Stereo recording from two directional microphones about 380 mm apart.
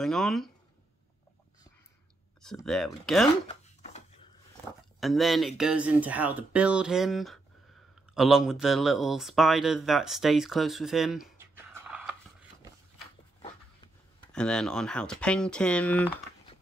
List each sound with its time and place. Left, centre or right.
0.0 s speech: centre
2.4 s speech: centre
3.4 s chopping: centre
5.0 s speech: centre
14.3 s speech: centre